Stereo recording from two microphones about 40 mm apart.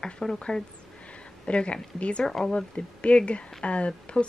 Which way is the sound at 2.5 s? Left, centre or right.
Left.